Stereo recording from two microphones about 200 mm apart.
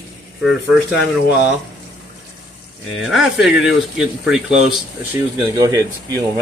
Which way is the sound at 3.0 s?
Centre (ahead or behind).